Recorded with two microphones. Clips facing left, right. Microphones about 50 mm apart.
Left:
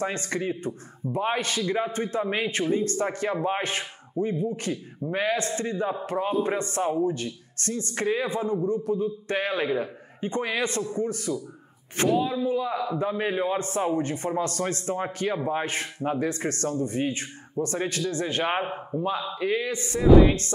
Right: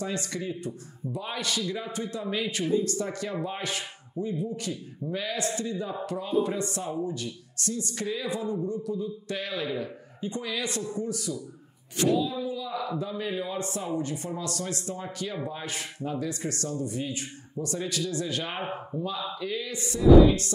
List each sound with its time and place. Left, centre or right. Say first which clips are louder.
0.0 s a man's voice: left 4 dB; left